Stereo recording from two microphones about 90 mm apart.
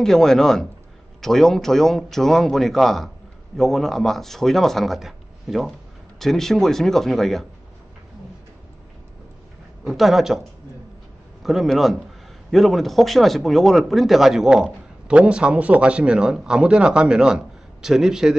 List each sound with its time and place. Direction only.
0.0 s speech: 5° left (ahead or behind)
9.8 s speech: centre (ahead or behind)
11.4 s speech: centre (ahead or behind)